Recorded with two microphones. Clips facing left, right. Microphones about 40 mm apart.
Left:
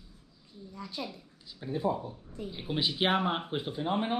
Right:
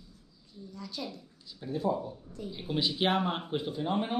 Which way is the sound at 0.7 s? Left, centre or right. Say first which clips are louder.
Left 1 dB; left.